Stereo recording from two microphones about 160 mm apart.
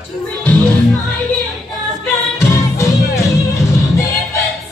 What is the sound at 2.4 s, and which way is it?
Music, 20° left (ahead or behind).